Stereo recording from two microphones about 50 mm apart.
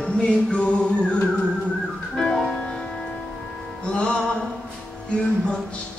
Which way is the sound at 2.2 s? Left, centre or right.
Centre.